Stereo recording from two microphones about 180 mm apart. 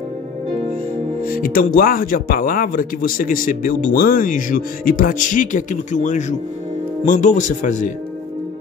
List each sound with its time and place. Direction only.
1.2 s speech: 55° left (ahead or behind)